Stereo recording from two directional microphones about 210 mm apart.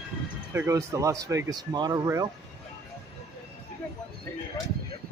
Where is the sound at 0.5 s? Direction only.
10° right (ahead or behind).